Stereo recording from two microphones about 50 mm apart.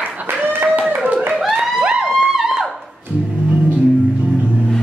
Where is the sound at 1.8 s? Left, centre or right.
Right.